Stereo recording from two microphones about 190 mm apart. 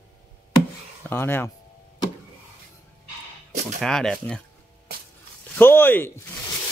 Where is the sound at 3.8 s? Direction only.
Centre (ahead or behind).